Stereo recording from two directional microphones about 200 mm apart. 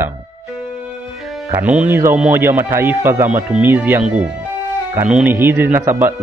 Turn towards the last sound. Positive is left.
turn(degrees=-10)  # may be behind; listen again after turning